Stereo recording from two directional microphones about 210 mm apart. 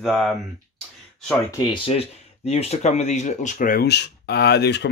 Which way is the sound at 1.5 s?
20° left (ahead or behind).